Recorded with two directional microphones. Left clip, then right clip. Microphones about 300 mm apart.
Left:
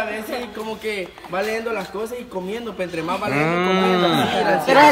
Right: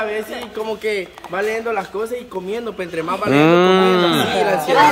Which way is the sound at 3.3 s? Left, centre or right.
Right.